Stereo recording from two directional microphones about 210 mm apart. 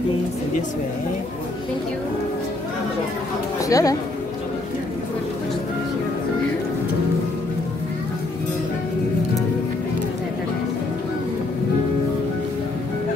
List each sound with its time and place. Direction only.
3.6 s speech: 15° left (ahead or behind)